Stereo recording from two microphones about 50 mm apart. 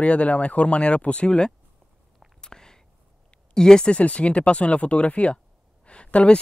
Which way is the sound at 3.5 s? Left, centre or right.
Centre.